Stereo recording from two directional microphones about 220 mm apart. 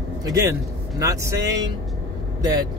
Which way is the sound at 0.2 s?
15° right (ahead or behind).